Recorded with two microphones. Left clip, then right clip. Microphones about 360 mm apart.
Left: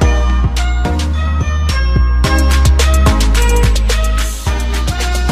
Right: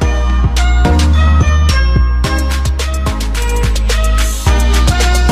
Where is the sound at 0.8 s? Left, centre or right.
Right.